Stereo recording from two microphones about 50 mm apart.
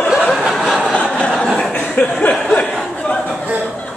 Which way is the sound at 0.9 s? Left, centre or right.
Left.